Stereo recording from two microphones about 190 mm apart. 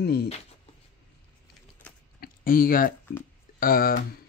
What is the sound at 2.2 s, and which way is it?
Speech, 50° left (ahead or behind).